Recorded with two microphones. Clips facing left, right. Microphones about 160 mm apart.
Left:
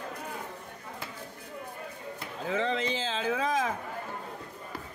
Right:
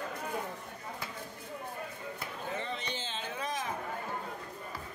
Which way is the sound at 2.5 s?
90° left.